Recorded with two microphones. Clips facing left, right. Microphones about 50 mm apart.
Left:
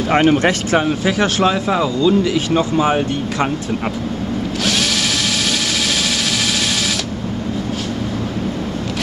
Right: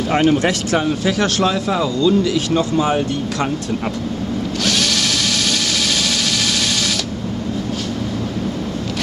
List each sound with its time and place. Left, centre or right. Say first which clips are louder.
0.1 s speech: left 2 dB; left
4.6 s drill: even; centre